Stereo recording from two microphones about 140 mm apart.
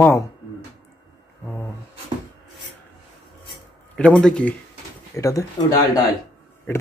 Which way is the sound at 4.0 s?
5° left (ahead or behind).